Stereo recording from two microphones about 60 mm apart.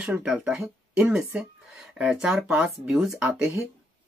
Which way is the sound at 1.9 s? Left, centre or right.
Centre.